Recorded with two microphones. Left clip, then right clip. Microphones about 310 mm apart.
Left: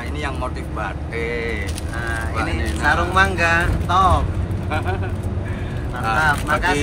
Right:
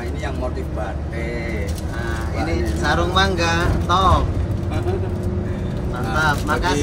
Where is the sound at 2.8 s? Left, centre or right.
Centre.